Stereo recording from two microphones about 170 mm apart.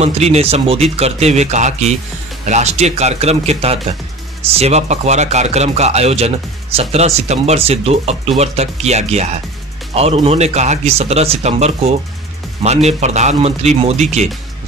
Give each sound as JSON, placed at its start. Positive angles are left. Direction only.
{"t": 0.0, "sound": "a man's voice", "side_deg": -40}